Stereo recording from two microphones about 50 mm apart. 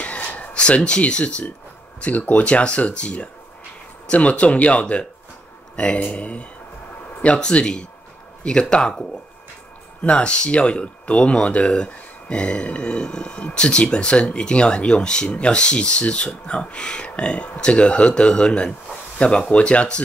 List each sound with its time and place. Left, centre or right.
0.0 s a sound: left
2.0 s speech: left
10.0 s speech: left